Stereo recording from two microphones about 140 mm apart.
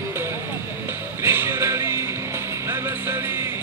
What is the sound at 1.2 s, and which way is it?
Music, 20° right (ahead or behind).